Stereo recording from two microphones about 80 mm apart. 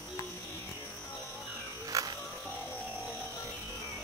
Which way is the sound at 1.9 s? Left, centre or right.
Right.